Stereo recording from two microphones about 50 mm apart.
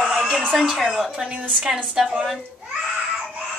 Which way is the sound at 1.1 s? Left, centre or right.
Centre.